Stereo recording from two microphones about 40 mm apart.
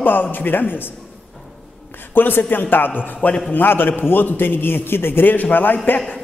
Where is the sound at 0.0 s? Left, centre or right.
Left.